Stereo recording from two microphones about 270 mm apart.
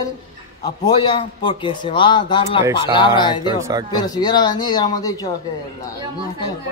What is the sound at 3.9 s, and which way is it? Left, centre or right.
A man's voice, centre.